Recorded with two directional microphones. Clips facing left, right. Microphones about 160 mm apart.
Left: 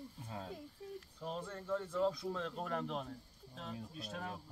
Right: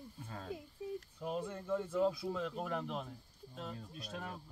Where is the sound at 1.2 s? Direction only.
10° right (ahead or behind).